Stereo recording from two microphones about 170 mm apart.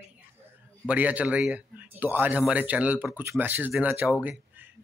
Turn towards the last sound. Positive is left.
turn(degrees=-10)  # may be behind; listen again after turning